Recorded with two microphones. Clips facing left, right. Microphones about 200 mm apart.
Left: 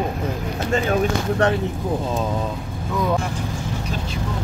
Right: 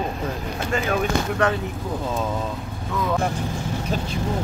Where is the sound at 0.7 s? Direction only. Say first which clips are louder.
Left 3 dB; 30° left (ahead or behind).